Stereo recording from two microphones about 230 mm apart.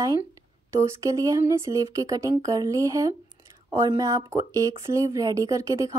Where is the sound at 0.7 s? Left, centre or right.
Centre.